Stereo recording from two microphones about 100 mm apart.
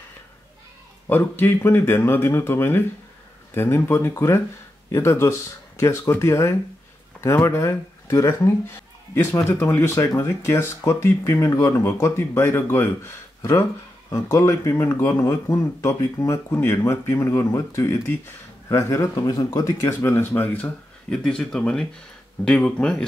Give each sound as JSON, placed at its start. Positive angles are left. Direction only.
{"t": 1.0, "sound": "speech", "side_deg": 20}